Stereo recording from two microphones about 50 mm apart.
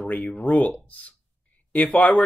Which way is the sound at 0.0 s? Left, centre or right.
Left.